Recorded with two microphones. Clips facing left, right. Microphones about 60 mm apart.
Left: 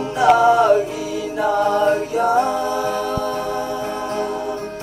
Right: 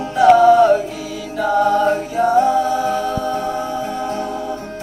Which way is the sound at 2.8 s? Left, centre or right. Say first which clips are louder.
Right 2 dB; left.